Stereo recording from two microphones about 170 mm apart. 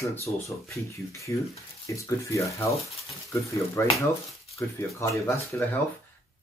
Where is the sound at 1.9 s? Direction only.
20° left (ahead or behind).